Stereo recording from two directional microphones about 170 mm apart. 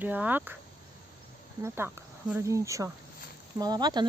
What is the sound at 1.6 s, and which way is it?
Speech, 15° right (ahead or behind).